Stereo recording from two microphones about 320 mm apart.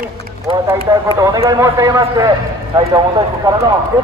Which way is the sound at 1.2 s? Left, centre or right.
Centre.